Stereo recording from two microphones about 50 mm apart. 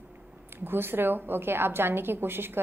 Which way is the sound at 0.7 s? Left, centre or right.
Right.